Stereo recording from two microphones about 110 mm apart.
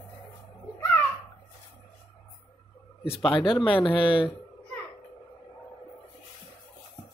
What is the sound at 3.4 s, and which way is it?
Speech, 50° left (ahead or behind).